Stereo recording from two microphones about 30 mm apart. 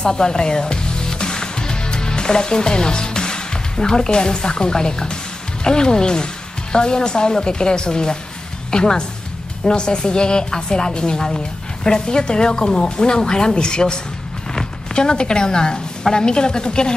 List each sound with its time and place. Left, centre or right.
0.0 s music: left
5.6 s a woman's voice: left
15.0 s a woman's voice: left